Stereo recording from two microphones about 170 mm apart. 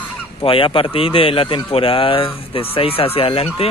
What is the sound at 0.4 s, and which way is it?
Speech, 30° left (ahead or behind).